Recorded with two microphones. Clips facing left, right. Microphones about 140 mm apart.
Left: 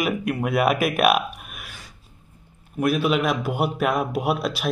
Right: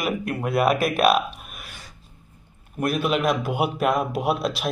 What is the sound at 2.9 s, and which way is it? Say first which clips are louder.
A man's voice: even; 5° left (ahead or behind).